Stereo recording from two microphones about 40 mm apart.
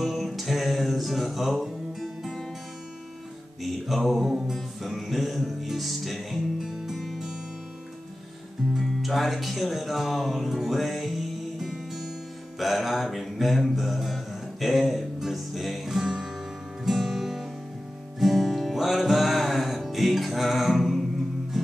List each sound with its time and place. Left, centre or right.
0.0 s music: centre
3.6 s music: centre
6.7 s music: centre
8.8 s speech: centre
10.7 s music: centre